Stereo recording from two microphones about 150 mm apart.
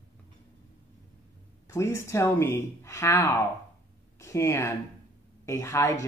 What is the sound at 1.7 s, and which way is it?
Speech, 20° left (ahead or behind).